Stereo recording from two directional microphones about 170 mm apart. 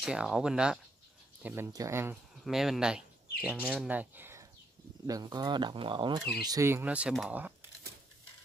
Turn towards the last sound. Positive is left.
turn(degrees=-10)  # may be behind; listen again after turning